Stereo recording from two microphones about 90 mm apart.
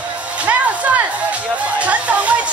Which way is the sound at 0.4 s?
15° right (ahead or behind).